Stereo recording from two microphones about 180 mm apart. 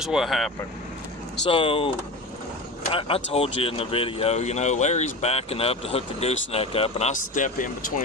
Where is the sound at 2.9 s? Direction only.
30° left (ahead or behind).